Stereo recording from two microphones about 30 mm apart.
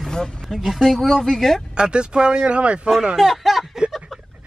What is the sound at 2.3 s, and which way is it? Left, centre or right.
Speech, right.